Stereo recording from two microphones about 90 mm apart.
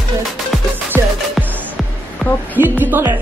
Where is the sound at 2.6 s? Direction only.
20° right (ahead or behind).